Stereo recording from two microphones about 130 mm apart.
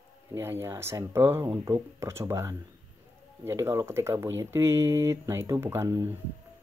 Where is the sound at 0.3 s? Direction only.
20° right (ahead or behind).